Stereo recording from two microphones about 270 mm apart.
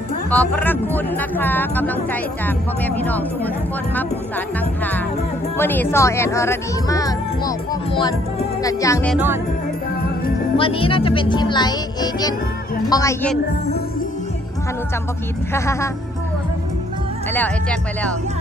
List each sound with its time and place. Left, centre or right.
0.3 s speech: centre
5.6 s speech: centre
9.1 s music: centre
10.6 s speech: centre
15.5 s speech: centre
17.3 s speech: centre